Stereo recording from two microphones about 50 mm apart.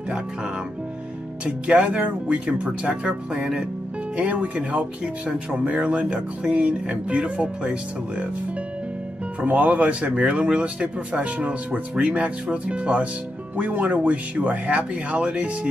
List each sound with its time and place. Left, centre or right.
1.4 s speech: right
9.4 s speech: right